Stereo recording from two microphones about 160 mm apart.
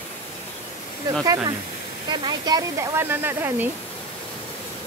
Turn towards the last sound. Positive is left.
turn(degrees=-15)  # may be behind; listen again after turning